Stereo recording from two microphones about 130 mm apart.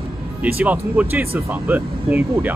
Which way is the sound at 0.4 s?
10° right (ahead or behind).